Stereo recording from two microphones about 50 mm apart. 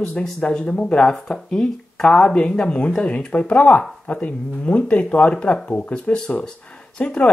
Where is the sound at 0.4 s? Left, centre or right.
Left.